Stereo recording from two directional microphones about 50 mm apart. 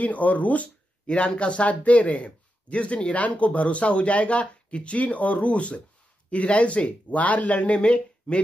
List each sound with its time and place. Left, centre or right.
0.0 s speech: left